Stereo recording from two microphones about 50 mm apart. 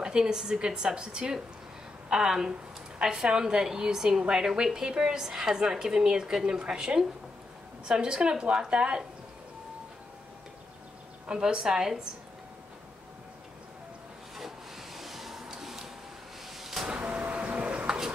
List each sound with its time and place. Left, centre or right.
0.0 s a woman's voice: centre
11.2 s a woman's voice: centre
14.3 s rub: centre
16.5 s vehicle: centre
16.9 s music: right
17.8 s a sound: centre